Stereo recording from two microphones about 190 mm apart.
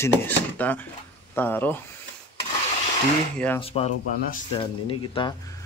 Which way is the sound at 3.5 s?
30° left (ahead or behind).